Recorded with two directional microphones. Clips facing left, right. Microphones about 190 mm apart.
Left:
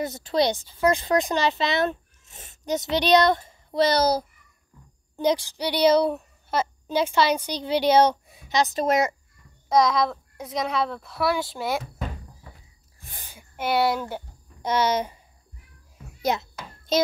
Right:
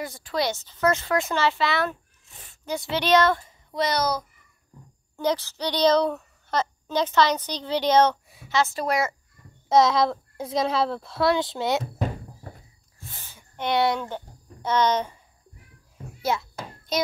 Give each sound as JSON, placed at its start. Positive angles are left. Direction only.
{"t": 0.0, "sound": "speech", "side_deg": 25}
{"t": 3.7, "sound": "a child's voice", "side_deg": 30}
{"t": 5.1, "sound": "speech", "side_deg": 15}
{"t": 9.7, "sound": "a child's voice", "side_deg": -25}
{"t": 11.8, "sound": "goat", "side_deg": -40}
{"t": 13.0, "sound": "a sound", "side_deg": 15}
{"t": 16.2, "sound": "a child's voice", "side_deg": 20}